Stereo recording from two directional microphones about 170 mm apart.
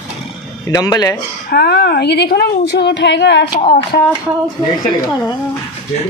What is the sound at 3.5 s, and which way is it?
Speech, 60° left (ahead or behind).